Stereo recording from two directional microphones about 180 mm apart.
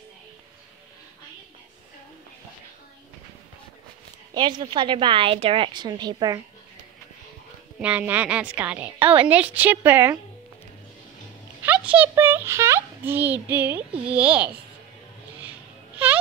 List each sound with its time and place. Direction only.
4.3 s a woman's voice: 25° right (ahead or behind)
7.8 s a woman's voice: 10° right (ahead or behind)
9.0 s a woman's voice: 30° right (ahead or behind)
9.3 s a woman's voice: 10° right (ahead or behind)
11.6 s a child's voice: 10° right (ahead or behind)
16.0 s a sound: 10° right (ahead or behind)